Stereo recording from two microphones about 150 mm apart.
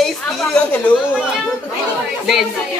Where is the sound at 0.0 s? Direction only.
5° left (ahead or behind).